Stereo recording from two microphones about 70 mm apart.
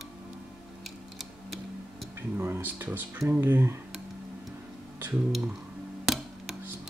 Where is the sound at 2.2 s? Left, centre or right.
Right.